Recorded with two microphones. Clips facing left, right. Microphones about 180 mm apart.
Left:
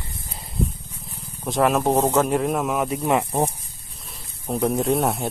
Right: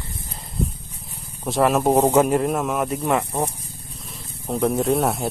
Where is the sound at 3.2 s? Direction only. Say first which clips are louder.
Left 2 dB; 25° left (ahead or behind).